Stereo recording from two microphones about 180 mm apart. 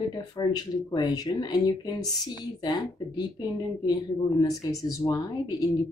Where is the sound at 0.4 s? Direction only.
25° left (ahead or behind).